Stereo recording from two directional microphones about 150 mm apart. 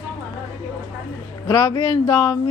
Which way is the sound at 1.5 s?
25° left (ahead or behind).